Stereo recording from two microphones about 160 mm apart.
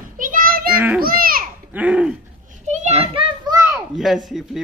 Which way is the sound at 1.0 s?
65° right (ahead or behind).